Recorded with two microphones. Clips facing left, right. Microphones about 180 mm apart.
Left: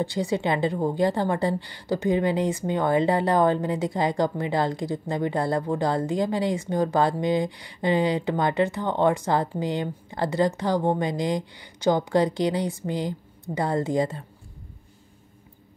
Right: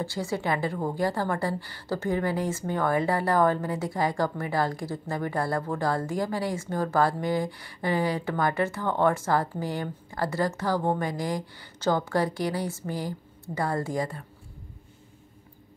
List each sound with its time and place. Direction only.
0.0 s a woman's voice: 20° left (ahead or behind)